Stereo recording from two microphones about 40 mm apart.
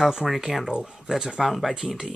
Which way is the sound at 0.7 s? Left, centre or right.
Centre.